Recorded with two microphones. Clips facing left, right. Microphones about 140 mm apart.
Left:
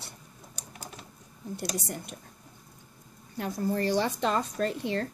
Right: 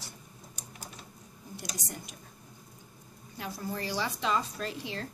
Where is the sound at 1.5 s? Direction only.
60° left (ahead or behind).